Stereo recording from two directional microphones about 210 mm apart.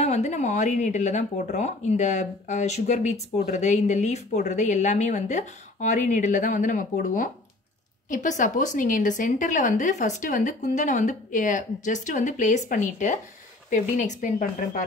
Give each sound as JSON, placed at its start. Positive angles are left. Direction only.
{"t": 0.0, "sound": "speech", "side_deg": 35}